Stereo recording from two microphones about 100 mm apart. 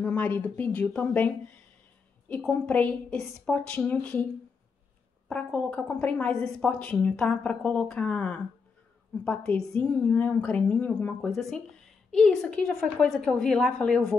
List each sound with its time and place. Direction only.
0.0 s a woman's voice: 20° left (ahead or behind)
2.5 s a woman's voice: 15° left (ahead or behind)
5.3 s a woman's voice: 15° left (ahead or behind)
11.1 s a woman's voice: centre (ahead or behind)